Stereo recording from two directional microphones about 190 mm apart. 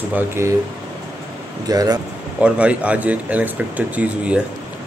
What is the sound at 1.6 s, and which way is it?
Speech, 20° right (ahead or behind).